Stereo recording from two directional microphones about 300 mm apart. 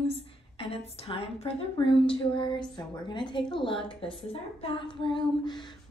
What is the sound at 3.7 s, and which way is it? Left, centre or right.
A woman's voice, centre.